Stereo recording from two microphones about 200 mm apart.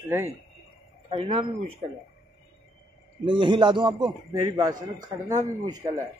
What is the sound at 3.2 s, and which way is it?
A man's voice, 25° right (ahead or behind).